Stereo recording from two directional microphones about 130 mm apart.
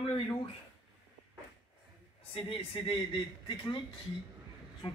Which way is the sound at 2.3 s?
45° left (ahead or behind).